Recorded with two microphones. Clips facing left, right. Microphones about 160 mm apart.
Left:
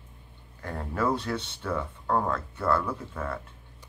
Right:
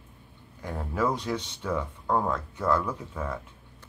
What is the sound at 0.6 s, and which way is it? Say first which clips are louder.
Speech: right 1 dB; 10° right (ahead or behind).